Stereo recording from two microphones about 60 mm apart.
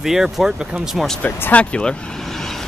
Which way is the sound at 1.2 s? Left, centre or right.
Left.